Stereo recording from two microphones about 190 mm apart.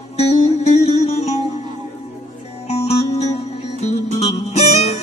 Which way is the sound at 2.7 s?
35° left (ahead or behind).